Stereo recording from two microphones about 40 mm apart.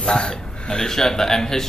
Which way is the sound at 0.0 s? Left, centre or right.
Left.